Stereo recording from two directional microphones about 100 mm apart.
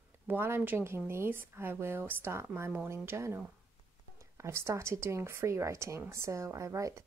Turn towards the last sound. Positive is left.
turn(degrees=-30)  # may be behind; listen again after turning